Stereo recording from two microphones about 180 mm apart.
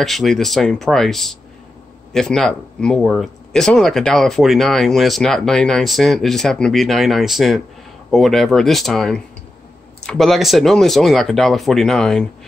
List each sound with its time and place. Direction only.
0.0 s speech: centre (ahead or behind)